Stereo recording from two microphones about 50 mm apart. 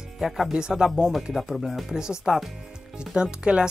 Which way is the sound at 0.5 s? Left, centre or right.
Centre.